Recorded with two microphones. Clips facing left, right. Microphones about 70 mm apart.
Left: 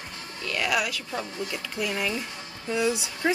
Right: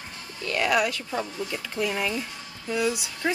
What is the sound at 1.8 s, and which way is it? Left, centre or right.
Speech, centre.